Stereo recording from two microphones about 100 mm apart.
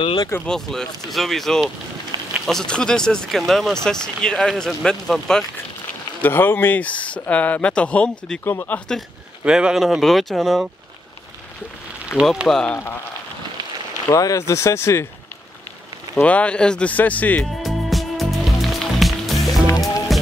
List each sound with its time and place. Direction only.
0.0 s speech: 60° left (ahead or behind)
0.5 s speech: 5° left (ahead or behind)
6.2 s speech: 20° left (ahead or behind)
9.4 s speech: 10° right (ahead or behind)
12.1 s speech: 10° right (ahead or behind)
12.4 s speech: 5° left (ahead or behind)
12.7 s speech: 25° left (ahead or behind)
14.1 s speech: 35° left (ahead or behind)
16.2 s speech: 15° left (ahead or behind)
17.6 s music: centre (ahead or behind)